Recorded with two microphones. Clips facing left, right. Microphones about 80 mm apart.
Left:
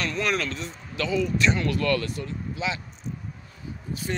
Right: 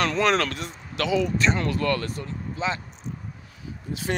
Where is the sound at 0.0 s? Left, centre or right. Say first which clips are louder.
Right 5 dB; right.